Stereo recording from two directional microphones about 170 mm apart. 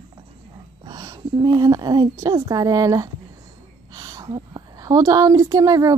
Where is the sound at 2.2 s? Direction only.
20° right (ahead or behind).